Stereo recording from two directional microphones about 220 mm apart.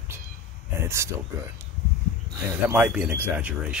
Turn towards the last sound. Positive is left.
turn(degrees=-5)  # may be behind; listen again after turning